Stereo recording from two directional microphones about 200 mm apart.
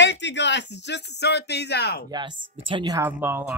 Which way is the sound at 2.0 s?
20° right (ahead or behind).